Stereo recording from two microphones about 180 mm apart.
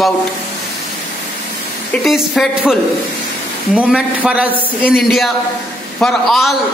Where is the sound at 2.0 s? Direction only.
Centre (ahead or behind).